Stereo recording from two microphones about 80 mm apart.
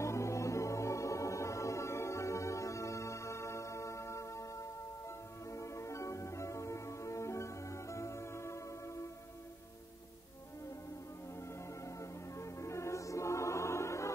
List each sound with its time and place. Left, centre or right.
0.0 s music: left
12.0 s music: left